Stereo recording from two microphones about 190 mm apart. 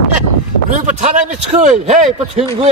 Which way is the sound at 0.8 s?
40° right (ahead or behind).